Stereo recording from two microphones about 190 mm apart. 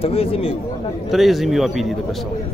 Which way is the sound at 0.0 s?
30° left (ahead or behind).